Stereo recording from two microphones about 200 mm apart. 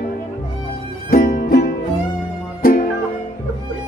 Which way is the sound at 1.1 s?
50° left (ahead or behind).